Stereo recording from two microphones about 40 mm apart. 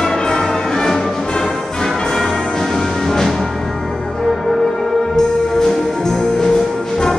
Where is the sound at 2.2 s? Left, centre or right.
Left.